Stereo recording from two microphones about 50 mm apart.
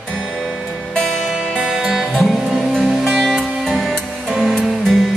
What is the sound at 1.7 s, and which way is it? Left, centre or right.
Music, centre.